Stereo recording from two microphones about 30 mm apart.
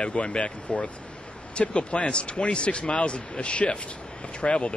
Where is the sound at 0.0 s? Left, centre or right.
Left.